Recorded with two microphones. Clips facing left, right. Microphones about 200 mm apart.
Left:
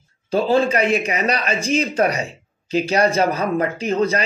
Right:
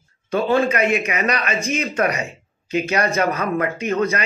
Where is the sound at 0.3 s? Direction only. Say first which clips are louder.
Left 1 dB; 35° left (ahead or behind).